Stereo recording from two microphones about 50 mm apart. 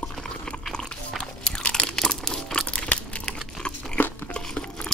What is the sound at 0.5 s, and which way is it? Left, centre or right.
Crunch, centre.